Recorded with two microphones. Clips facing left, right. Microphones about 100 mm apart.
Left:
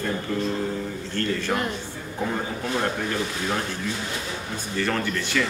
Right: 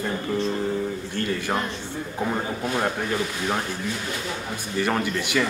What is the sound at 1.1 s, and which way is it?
Speech, 15° right (ahead or behind).